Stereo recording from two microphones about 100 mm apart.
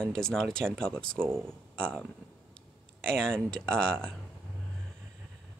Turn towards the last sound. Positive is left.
turn(degrees=5)  # may be behind; listen again after turning